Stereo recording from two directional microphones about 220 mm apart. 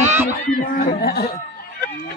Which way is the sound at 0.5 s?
40° left (ahead or behind).